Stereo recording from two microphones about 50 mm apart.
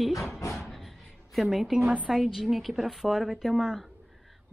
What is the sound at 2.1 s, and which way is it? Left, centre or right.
A woman's voice, centre.